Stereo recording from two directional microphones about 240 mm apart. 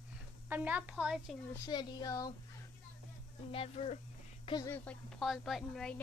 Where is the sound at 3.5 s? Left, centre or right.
Left.